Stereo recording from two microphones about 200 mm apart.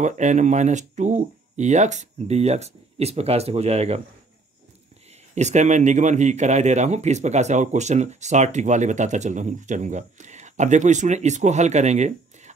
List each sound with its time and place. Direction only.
0.0 s speech: 35° right (ahead or behind)
5.3 s speech: 35° right (ahead or behind)